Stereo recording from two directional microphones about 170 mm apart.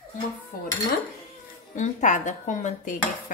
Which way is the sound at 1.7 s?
45° left (ahead or behind).